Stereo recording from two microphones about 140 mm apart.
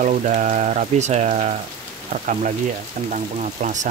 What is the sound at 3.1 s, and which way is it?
Speech, 65° right (ahead or behind).